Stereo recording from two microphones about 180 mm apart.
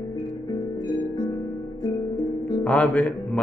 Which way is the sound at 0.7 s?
25° left (ahead or behind).